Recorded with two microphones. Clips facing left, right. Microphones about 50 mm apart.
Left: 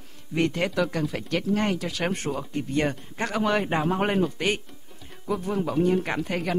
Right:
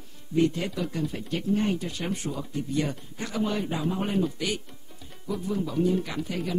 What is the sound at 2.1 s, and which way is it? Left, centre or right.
Speech, left.